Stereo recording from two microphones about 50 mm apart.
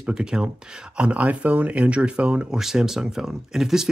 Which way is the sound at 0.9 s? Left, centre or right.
Right.